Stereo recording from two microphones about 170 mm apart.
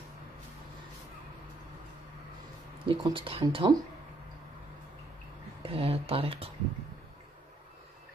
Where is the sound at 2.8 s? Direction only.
30° right (ahead or behind).